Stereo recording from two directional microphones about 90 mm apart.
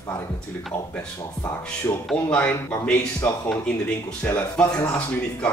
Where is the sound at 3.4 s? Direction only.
15° left (ahead or behind).